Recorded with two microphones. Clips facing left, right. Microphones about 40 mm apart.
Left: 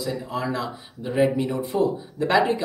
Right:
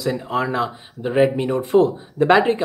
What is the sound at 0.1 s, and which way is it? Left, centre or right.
Speech, right.